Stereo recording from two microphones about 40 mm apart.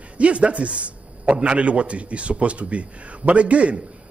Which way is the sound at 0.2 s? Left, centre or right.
Right.